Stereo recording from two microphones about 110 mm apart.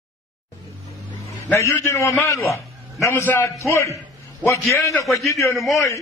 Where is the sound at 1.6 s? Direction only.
25° left (ahead or behind).